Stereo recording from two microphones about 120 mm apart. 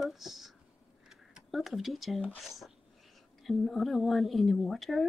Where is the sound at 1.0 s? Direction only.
5° right (ahead or behind).